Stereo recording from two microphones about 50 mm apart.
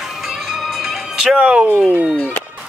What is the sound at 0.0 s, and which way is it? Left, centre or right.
Music, centre.